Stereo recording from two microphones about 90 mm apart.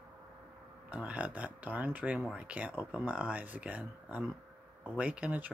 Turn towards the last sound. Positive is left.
turn(degrees=-15)  # may be behind; listen again after turning